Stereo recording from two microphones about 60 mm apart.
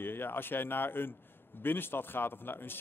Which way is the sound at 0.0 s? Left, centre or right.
Left.